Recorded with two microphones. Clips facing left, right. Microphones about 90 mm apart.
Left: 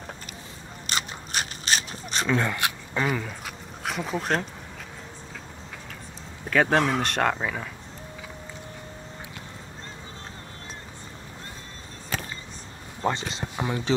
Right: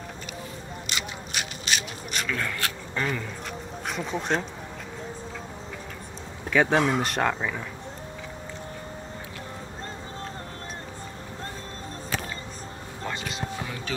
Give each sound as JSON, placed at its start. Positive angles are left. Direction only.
{"t": 0.8, "sound": "a sound", "side_deg": 40}
{"t": 6.5, "sound": "speech", "side_deg": 0}
{"t": 13.0, "sound": "speech", "side_deg": 30}